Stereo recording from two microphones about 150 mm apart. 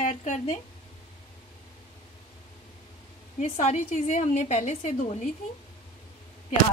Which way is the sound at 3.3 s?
50° left (ahead or behind).